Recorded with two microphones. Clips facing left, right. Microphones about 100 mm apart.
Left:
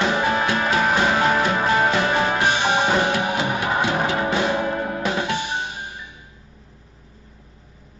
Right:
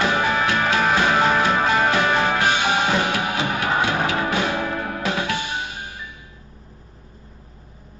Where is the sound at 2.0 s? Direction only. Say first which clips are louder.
Even; 25° left (ahead or behind).